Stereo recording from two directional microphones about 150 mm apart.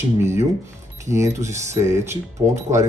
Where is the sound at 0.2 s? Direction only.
15° right (ahead or behind).